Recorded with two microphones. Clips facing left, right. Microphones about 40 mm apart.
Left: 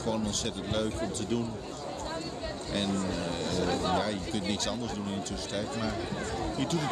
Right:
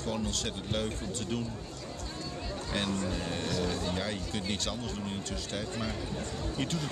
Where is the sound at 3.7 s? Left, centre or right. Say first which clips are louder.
Left 5 dB; left.